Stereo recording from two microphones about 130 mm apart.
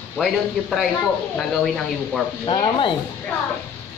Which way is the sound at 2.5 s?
40° left (ahead or behind).